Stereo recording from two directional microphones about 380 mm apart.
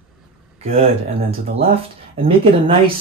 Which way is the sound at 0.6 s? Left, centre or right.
Centre.